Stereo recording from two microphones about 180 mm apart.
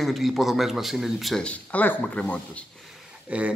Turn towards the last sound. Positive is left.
turn(degrees=-5)  # may be behind; listen again after turning